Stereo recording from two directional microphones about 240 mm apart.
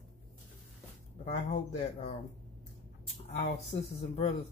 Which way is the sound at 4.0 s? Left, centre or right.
Left.